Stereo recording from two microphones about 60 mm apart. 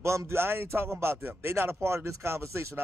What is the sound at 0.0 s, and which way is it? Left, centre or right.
Speech, right.